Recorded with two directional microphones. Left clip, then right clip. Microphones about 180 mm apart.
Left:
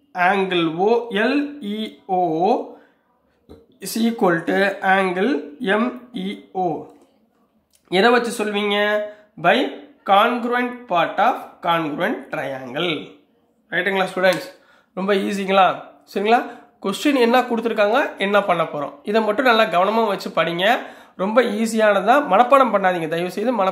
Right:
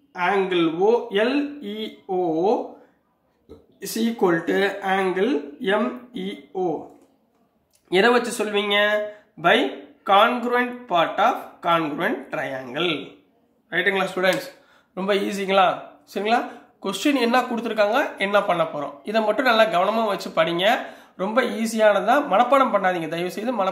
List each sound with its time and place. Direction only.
0.1 s speech: 40° left (ahead or behind)
3.8 s speech: 35° left (ahead or behind)
7.9 s speech: 25° left (ahead or behind)